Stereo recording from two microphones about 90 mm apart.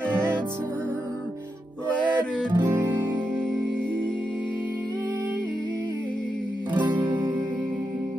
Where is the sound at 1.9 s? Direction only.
10° left (ahead or behind).